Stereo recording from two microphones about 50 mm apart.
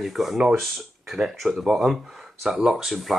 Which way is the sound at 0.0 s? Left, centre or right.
Centre.